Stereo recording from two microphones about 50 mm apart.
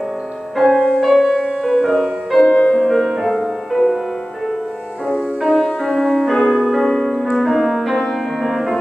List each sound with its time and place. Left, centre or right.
0.7 s music: centre
1.0 s music: centre
2.4 s music: centre
2.7 s music: centre
5.4 s music: centre